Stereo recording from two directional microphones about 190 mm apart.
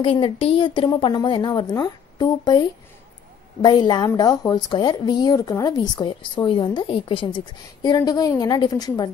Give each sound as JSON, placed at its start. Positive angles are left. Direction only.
{"t": 0.0, "sound": "speech", "side_deg": 30}
{"t": 3.6, "sound": "speech", "side_deg": 25}